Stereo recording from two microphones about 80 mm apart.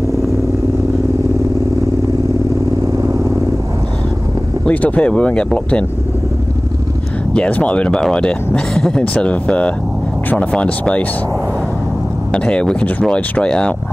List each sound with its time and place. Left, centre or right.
4.6 s speech: centre
7.3 s speech: centre
12.3 s speech: centre